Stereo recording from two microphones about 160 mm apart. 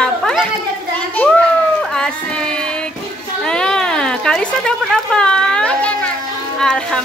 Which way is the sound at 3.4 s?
5° left (ahead or behind).